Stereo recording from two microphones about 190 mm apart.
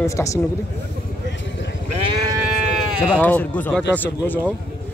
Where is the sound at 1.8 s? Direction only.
35° right (ahead or behind).